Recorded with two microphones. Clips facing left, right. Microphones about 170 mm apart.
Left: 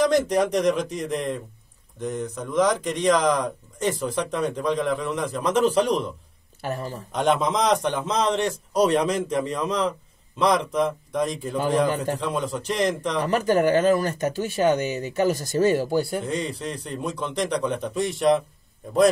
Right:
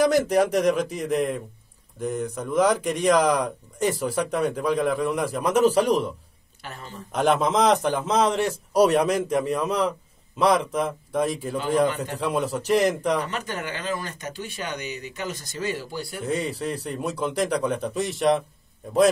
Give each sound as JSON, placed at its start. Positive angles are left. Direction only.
{"t": 0.0, "sound": "speech", "side_deg": -5}
{"t": 6.6, "sound": "speech", "side_deg": 40}
{"t": 7.1, "sound": "a man's voice", "side_deg": 0}
{"t": 13.2, "sound": "speech", "side_deg": 45}
{"t": 16.2, "sound": "a man's voice", "side_deg": -5}